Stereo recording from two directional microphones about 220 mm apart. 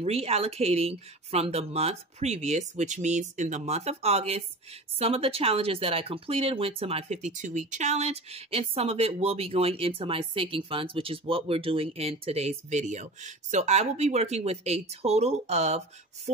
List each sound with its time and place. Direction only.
0.0 s speech: 30° right (ahead or behind)